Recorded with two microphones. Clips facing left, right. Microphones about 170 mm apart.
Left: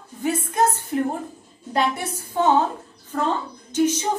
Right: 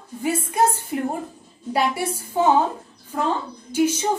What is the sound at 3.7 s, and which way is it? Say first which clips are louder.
Speech: even; 10° right (ahead or behind).